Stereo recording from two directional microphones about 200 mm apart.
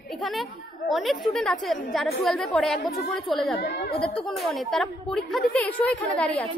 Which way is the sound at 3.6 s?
50° left (ahead or behind).